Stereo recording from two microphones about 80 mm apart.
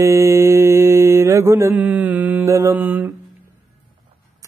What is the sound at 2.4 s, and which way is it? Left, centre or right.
Mantra, right.